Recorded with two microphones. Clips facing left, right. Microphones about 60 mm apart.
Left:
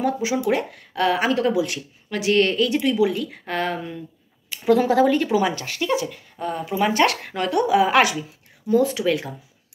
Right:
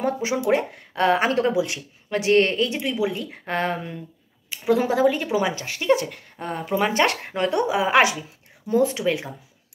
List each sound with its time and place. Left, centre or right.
0.0 s speech: right
2.1 s speech: right
2.8 s speech: centre; by 4.0 s right
4.5 s speech: centre
5.9 s speech: right